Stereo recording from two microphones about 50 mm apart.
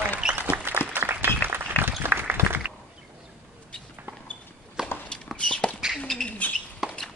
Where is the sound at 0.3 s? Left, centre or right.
Right.